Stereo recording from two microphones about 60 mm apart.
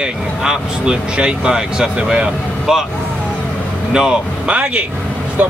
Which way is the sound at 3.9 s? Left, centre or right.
Centre.